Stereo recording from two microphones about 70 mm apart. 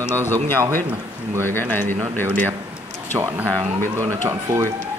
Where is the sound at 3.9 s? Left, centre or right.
Right.